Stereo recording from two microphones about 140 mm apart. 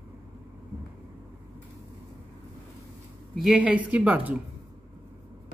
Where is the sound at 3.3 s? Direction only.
5° right (ahead or behind).